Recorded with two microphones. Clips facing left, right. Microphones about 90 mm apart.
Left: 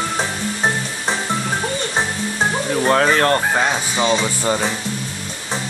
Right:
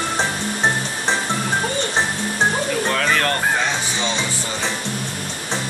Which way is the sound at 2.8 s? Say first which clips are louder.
Left 8 dB; 35° left (ahead or behind).